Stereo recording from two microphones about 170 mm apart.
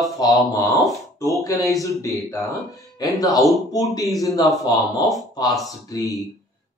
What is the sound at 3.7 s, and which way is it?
Speech, 20° left (ahead or behind).